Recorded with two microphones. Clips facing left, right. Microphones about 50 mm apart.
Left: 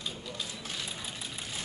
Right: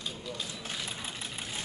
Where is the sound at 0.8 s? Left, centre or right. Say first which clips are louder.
Right 1 dB; right.